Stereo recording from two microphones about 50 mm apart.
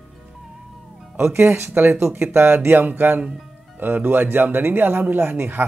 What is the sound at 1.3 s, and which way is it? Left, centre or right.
Speech, right.